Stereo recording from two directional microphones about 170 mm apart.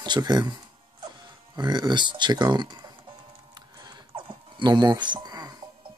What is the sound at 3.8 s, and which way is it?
Dog, 25° right (ahead or behind).